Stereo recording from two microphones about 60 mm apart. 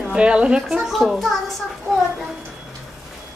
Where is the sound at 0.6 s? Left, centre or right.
Centre.